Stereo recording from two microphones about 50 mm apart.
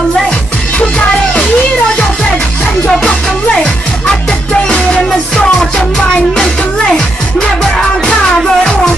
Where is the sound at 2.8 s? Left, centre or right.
Centre.